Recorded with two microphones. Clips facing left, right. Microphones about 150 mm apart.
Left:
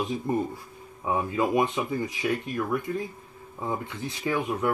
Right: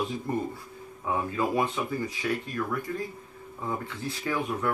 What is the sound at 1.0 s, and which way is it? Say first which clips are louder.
Speech: left 2 dB; 20° left (ahead or behind).